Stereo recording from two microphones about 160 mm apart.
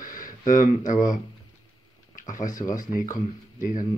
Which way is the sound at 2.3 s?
55° left (ahead or behind).